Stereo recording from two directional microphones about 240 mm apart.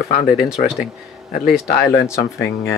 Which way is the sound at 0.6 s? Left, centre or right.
Centre.